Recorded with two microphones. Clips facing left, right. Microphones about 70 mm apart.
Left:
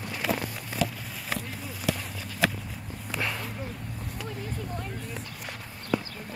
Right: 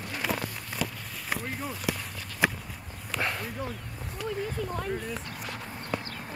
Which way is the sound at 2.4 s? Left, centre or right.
Centre.